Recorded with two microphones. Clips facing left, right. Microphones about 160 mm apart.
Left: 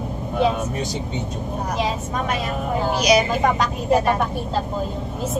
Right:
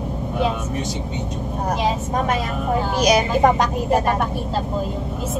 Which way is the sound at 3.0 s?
45° right (ahead or behind).